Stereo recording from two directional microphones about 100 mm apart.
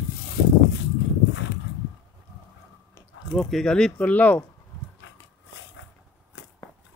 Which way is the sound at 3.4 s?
5° left (ahead or behind).